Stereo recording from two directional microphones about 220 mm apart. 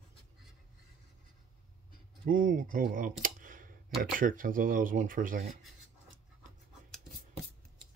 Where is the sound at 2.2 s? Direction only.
35° right (ahead or behind).